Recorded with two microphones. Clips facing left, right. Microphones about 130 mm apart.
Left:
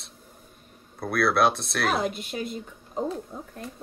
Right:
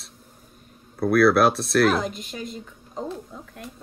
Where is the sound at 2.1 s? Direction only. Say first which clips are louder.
Left 2 dB; 45° right (ahead or behind).